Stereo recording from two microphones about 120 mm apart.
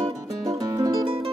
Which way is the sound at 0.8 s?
35° right (ahead or behind).